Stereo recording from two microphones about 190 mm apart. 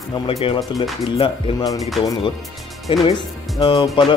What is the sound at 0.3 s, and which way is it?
Speech, 30° left (ahead or behind).